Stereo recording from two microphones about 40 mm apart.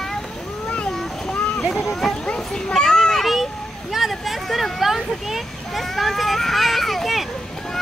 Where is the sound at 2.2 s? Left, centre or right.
Centre.